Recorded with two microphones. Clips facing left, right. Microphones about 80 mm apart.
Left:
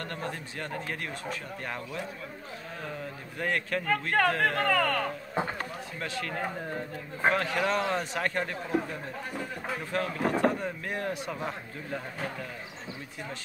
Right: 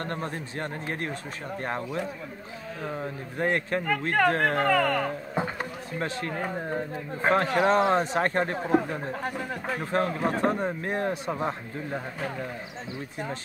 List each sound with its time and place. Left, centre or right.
0.0 s a man's voice: right
4.6 s speech: centre
5.9 s a man's voice: right